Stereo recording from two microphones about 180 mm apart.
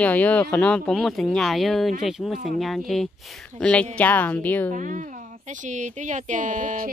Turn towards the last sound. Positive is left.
turn(degrees=-45)  # may be behind; listen again after turning